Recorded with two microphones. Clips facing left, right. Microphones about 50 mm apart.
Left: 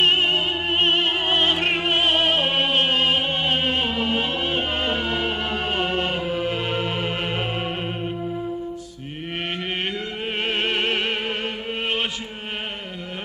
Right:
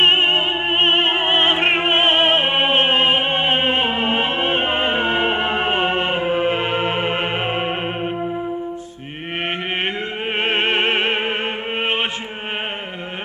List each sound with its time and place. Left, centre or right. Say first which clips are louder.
0.0 s opera: right 4 dB; right
10.4 s music: right 5 dB; right
11.8 s chant: right 4 dB; right